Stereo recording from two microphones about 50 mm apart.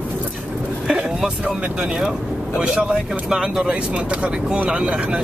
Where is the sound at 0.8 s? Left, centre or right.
Centre.